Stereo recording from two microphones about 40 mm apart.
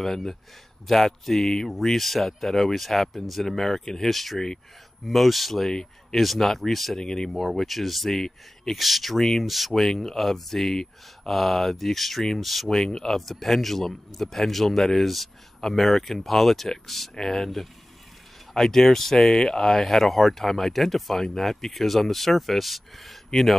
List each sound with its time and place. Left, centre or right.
0.0 s a man's voice: centre
5.7 s speech: centre
6.2 s a man's voice: centre
7.0 s speech: centre
7.2 s a man's voice: centre
12.6 s a man's voice: centre